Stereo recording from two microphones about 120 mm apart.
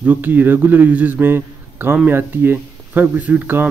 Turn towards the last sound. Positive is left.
turn(degrees=-15)  # may be behind; listen again after turning